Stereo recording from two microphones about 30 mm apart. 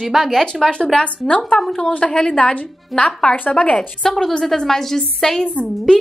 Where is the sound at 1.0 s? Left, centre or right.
Left.